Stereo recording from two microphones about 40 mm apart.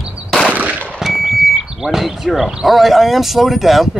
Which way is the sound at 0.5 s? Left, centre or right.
Right.